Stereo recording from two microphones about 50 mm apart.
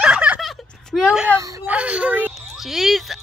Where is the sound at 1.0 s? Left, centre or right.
Right.